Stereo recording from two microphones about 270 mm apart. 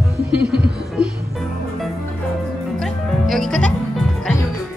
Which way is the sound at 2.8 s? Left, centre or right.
Centre.